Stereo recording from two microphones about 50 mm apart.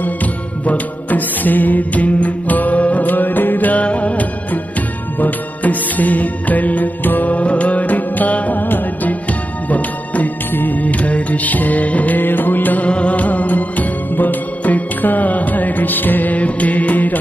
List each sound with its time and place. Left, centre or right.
0.0 s music: left
3.8 s music: left
12.8 s music: left